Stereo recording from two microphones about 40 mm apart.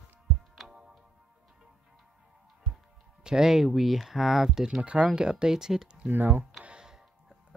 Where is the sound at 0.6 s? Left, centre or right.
Centre.